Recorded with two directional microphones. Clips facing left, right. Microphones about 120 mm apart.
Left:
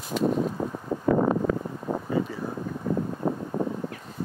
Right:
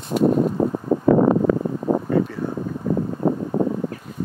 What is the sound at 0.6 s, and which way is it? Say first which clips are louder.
Wind: right 8 dB; 90° right.